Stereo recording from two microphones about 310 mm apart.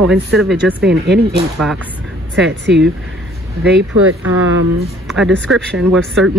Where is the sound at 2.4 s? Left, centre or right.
Right.